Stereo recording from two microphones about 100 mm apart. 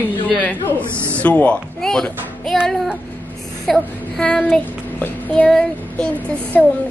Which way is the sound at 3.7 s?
5° left (ahead or behind).